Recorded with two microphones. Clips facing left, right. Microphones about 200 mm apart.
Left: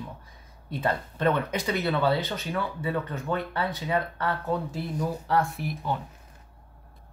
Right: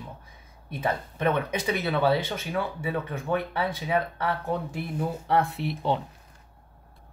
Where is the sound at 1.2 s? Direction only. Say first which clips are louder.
Even; 15° right (ahead or behind).